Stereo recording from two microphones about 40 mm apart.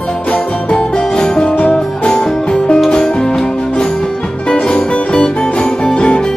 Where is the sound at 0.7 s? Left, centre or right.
Left.